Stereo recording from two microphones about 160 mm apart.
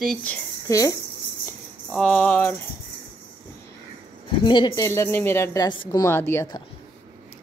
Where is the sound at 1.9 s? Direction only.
5° left (ahead or behind).